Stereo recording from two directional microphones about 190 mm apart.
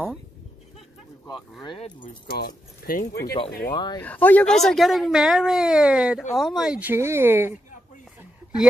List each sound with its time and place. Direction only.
1.6 s speech: 25° left (ahead or behind)
2.2 s speech: 55° left (ahead or behind)
3.6 s speech: 20° left (ahead or behind)
4.0 s speech: 10° left (ahead or behind); by 7.5 s 10° right (ahead or behind)